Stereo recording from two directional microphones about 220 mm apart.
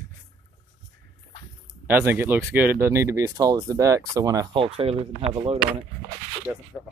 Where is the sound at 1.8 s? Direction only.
10° right (ahead or behind); by 5.6 s 30° right (ahead or behind).